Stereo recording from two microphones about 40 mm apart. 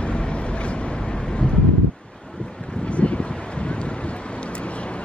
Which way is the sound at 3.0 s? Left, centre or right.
Left.